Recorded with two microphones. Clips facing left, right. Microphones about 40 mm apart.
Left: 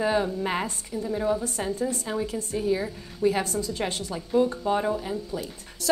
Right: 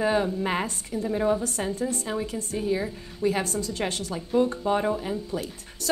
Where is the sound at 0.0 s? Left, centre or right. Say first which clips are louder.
Right 1 dB; centre.